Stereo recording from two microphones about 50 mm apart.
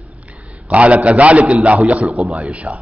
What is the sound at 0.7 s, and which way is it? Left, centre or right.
A man's voice, right.